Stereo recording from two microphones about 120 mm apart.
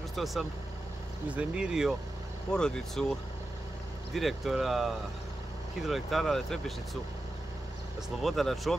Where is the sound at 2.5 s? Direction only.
5° left (ahead or behind).